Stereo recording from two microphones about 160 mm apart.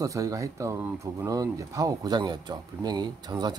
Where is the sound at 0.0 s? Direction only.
20° right (ahead or behind).